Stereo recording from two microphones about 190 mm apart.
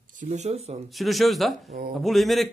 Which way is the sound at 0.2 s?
35° right (ahead or behind).